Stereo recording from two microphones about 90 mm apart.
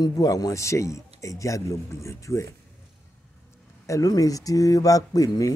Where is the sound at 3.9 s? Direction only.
40° left (ahead or behind).